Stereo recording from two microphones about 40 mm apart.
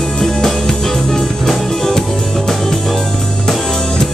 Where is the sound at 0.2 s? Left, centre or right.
Centre.